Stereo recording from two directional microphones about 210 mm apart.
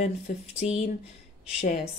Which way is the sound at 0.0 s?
30° left (ahead or behind).